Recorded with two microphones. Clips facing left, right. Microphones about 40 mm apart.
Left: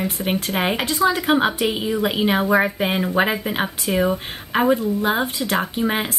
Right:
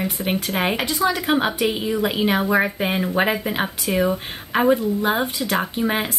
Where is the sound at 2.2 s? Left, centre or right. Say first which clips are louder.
Left 2 dB; centre.